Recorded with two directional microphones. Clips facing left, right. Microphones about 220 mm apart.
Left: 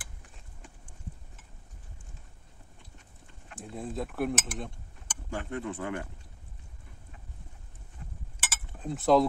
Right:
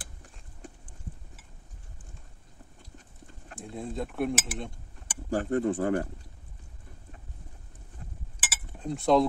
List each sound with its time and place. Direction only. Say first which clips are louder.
3.5 s speech: right 1 dB; centre (ahead or behind)
5.3 s speech: right 8 dB; 40° right (ahead or behind)
8.4 s chink: even; 5° right (ahead or behind)